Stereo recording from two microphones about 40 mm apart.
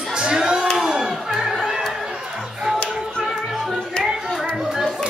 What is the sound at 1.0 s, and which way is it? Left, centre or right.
Music, centre.